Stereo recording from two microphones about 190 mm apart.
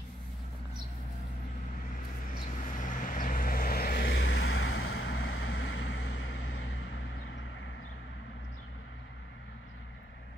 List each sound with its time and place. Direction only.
2.6 s vehicle: 45° left (ahead or behind)
4.1 s vehicle: 75° left (ahead or behind)